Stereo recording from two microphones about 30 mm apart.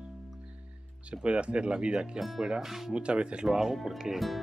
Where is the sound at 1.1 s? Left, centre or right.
Right.